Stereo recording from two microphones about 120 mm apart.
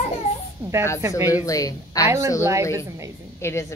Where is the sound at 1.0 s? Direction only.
25° right (ahead or behind).